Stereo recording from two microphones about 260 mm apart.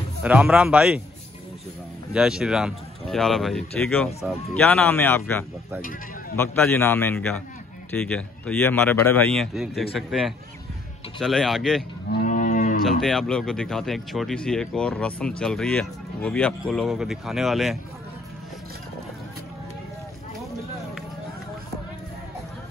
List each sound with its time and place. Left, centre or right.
0.2 s speech: centre
2.1 s a man's voice: centre
12.1 s cattle: left
13.0 s speech: centre